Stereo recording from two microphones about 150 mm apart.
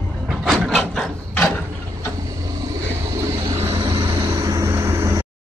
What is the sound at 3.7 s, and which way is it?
Vehicle, 35° right (ahead or behind).